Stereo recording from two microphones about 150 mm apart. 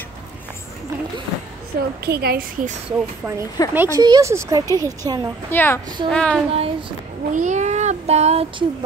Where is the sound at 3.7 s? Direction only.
15° right (ahead or behind).